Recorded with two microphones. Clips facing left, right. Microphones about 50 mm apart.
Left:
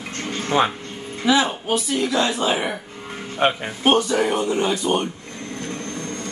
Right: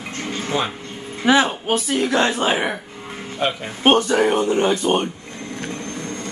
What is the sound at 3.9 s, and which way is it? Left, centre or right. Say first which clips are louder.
Speech: right 2 dB; right.